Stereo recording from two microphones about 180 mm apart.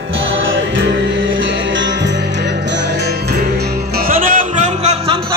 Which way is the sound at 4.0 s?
50° right (ahead or behind).